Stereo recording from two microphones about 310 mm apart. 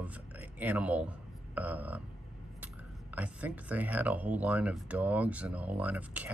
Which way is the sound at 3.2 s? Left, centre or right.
Centre.